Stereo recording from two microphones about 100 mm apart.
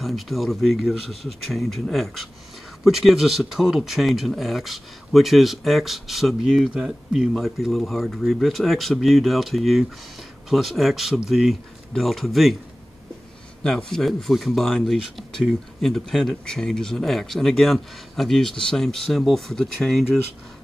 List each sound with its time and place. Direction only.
0.0 s speech: centre (ahead or behind)
13.6 s speech: 5° left (ahead or behind)